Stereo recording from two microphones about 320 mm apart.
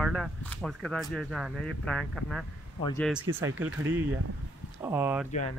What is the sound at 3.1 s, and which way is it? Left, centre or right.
Speech, centre.